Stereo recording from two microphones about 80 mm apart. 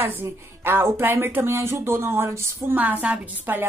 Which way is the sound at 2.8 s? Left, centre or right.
Centre.